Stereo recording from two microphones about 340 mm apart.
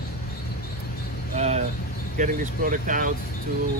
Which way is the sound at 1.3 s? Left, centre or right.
Centre.